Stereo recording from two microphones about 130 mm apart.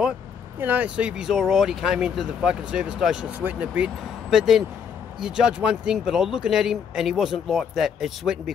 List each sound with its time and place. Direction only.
0.6 s speech: 15° right (ahead or behind)